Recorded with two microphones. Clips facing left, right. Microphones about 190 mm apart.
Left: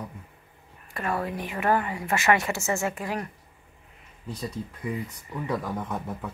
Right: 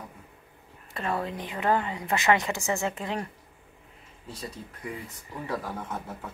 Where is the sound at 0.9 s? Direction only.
25° right (ahead or behind).